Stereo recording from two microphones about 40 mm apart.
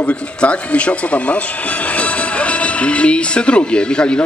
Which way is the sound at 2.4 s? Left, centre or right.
Left.